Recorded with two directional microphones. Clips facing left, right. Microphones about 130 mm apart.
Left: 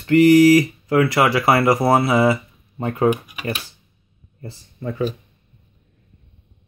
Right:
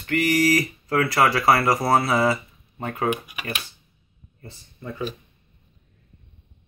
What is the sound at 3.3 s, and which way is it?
Speech, 30° left (ahead or behind).